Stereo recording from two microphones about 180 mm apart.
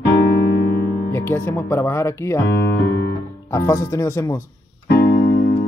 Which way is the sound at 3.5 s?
15° left (ahead or behind).